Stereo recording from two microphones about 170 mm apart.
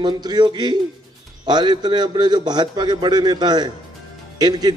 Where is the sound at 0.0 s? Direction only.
25° right (ahead or behind).